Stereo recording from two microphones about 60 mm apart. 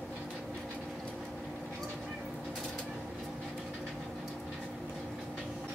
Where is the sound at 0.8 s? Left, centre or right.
Centre.